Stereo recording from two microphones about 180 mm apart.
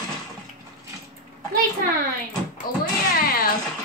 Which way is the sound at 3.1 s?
55° left (ahead or behind).